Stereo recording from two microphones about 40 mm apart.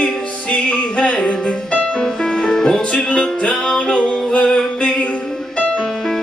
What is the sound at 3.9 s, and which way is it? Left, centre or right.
Music, left.